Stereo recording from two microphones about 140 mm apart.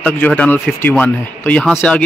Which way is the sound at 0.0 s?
10° left (ahead or behind).